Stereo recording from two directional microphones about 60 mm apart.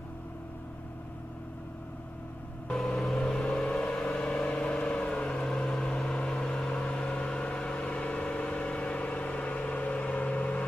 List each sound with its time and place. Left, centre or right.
2.7 s vehicle: centre